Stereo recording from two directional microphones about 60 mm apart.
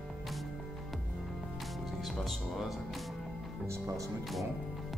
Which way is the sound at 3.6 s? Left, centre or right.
Right.